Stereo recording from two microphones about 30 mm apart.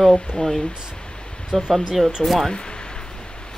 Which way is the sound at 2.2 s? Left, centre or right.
Centre.